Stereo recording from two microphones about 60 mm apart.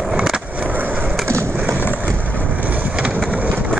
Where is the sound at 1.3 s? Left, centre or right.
Right.